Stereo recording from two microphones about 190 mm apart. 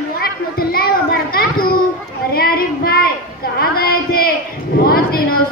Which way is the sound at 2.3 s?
50° left (ahead or behind).